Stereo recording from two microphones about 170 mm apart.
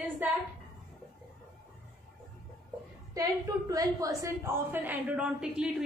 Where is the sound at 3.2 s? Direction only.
20° right (ahead or behind).